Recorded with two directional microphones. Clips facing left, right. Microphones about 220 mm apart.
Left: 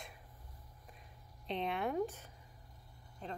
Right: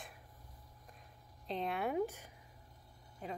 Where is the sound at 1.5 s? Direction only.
Centre (ahead or behind).